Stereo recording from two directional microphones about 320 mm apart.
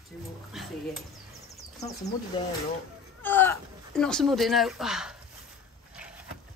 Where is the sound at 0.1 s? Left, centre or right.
Centre.